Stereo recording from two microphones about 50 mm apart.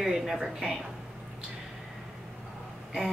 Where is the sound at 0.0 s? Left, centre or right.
Centre.